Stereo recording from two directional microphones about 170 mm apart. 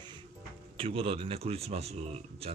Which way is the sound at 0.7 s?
35° right (ahead or behind).